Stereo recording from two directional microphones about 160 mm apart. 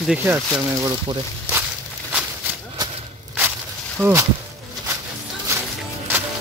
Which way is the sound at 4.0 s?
15° right (ahead or behind).